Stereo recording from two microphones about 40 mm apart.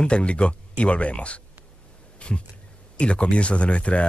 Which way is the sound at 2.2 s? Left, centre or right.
Left.